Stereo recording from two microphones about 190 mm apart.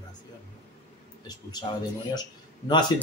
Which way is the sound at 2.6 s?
25° left (ahead or behind).